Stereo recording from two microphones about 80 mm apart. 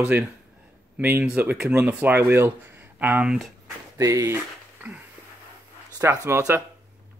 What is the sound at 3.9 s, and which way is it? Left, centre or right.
Speech, right.